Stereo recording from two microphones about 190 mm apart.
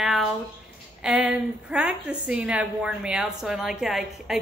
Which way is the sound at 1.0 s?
5° right (ahead or behind).